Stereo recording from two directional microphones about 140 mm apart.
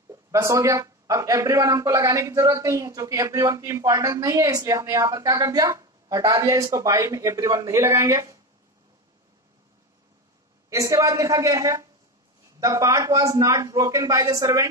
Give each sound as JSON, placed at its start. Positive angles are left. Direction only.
{"t": 0.1, "sound": "speech", "side_deg": -20}
{"t": 10.7, "sound": "speech", "side_deg": -25}